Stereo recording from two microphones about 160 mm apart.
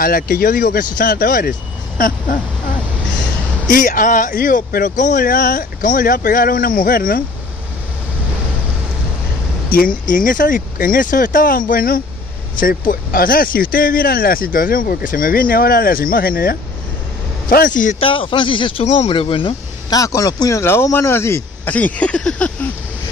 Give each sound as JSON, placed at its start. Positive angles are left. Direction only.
{"t": 0.0, "sound": "speech", "side_deg": 70}
{"t": 3.6, "sound": "speech", "side_deg": 55}
{"t": 9.7, "sound": "speech", "side_deg": 60}
{"t": 18.0, "sound": "speech", "side_deg": 35}